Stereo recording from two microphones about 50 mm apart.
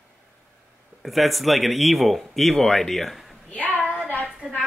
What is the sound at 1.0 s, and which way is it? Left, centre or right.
Speech, centre.